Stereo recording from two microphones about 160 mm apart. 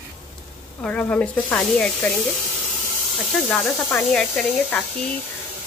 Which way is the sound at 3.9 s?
5° left (ahead or behind).